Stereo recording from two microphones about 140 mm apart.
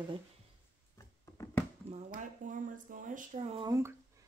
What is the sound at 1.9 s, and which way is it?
Speech, 65° right (ahead or behind).